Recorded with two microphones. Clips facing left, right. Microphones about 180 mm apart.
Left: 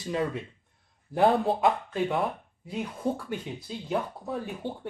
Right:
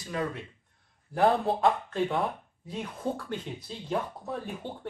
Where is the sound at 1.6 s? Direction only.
5° left (ahead or behind).